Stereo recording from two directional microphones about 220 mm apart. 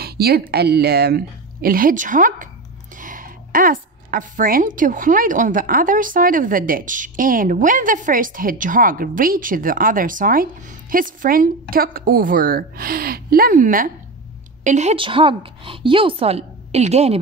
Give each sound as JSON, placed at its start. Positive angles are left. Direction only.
{"t": 0.0, "sound": "a woman's voice", "side_deg": -45}